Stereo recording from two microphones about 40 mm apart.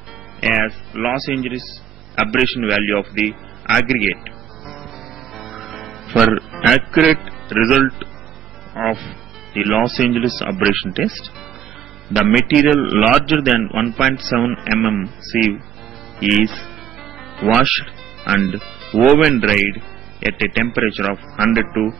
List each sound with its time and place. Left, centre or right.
0.7 s a man's voice: centre
5.3 s music: centre
6.3 s a man's voice: centre
16.2 s music: centre
17.6 s a man's voice: centre